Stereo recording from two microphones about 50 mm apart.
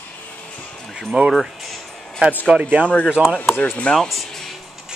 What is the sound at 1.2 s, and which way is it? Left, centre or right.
Speech, centre.